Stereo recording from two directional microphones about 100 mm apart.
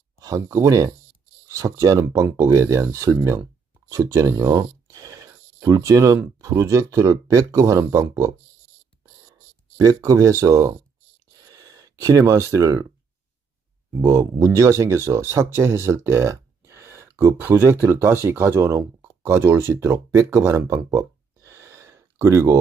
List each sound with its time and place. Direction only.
0.2 s speech: 35° right (ahead or behind)
9.8 s speech: 35° right (ahead or behind)
11.3 s a sound: 40° right (ahead or behind)
13.8 s speech: 30° right (ahead or behind)